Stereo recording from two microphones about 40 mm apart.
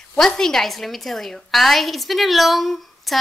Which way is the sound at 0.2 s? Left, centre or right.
Centre.